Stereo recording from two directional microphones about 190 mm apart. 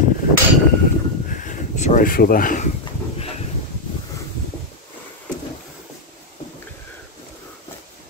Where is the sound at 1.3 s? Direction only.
40° left (ahead or behind).